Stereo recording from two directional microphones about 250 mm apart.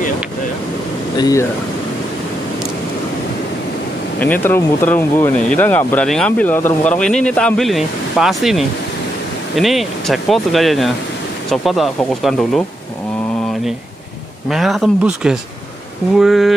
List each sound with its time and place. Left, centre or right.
1.1 s speech: centre
4.2 s speech: centre
14.5 s speech: centre